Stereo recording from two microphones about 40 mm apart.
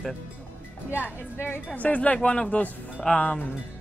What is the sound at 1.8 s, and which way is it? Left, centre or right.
Speech, left.